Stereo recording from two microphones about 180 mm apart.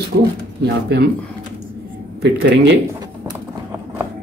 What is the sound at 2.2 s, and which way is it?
Speech, 70° right (ahead or behind).